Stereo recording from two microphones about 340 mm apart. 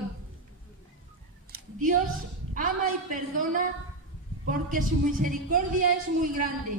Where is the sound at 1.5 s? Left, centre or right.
Right.